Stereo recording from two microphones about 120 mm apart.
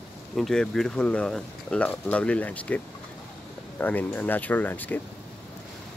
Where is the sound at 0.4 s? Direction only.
5° left (ahead or behind).